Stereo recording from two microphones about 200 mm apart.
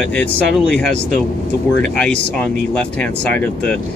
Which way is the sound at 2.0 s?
5° left (ahead or behind).